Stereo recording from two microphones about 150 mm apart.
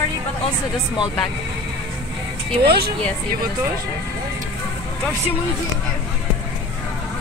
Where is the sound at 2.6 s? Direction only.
90° right.